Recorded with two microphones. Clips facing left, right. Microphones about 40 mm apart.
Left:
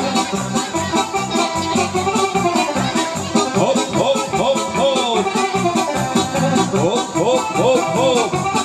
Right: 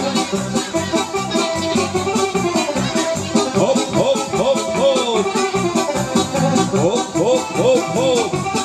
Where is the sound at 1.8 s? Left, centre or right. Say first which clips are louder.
Left 2 dB; centre.